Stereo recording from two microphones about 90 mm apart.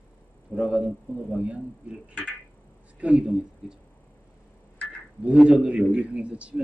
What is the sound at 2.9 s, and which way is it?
Speech, 15° right (ahead or behind).